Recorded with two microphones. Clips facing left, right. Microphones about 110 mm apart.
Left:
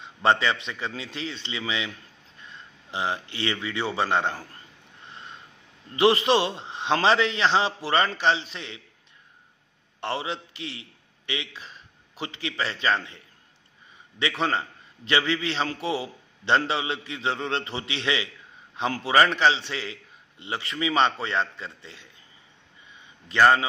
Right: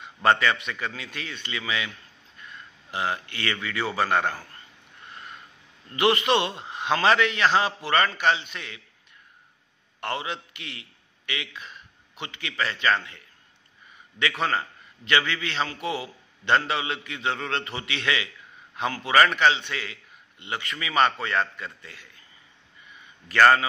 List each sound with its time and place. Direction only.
0.0 s a man's voice: 25° left (ahead or behind)
5.0 s a sound: 25° left (ahead or behind)
5.9 s a man's voice: 30° left (ahead or behind)
9.9 s a man's voice: 30° left (ahead or behind)
14.4 s a man's voice: 30° left (ahead or behind)
23.2 s a man's voice: 20° left (ahead or behind)